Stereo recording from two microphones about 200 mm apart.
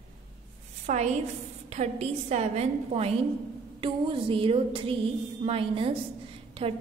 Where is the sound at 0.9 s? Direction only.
35° right (ahead or behind).